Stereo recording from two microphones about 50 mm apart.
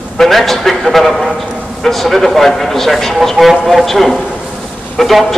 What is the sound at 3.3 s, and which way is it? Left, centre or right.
Speech, centre.